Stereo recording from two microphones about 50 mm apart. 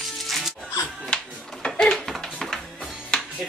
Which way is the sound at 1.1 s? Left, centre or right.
Centre.